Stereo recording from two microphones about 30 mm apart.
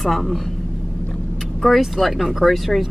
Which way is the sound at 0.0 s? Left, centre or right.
Centre.